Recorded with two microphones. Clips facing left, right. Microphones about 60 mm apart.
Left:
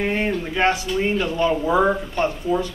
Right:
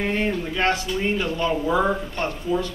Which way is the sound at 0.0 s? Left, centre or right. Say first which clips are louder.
Left 1 dB; left.